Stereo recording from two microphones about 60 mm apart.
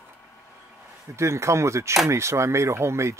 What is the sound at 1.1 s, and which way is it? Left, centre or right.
Speech, right.